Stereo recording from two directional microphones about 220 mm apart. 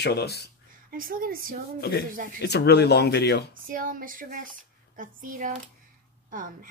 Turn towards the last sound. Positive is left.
turn(degrees=-40)  # may be behind; listen again after turning